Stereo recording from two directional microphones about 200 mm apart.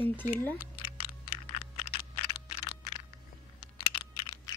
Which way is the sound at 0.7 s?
25° left (ahead or behind).